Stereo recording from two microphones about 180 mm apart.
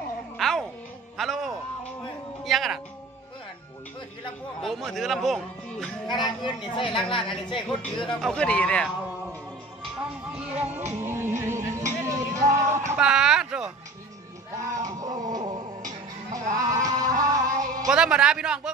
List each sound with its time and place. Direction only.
0.4 s music: centre (ahead or behind)
1.1 s a sound: centre (ahead or behind)
2.4 s music: centre (ahead or behind)
4.6 s speech: centre (ahead or behind)
6.0 s speech: 25° left (ahead or behind)
8.2 s speech: 5° left (ahead or behind)
10.3 s music: 5° right (ahead or behind)
12.9 s a sound: 5° right (ahead or behind)
14.8 s music: 20° right (ahead or behind)
17.9 s speech: 5° right (ahead or behind)